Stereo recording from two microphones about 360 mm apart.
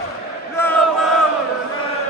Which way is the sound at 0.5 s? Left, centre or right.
Centre.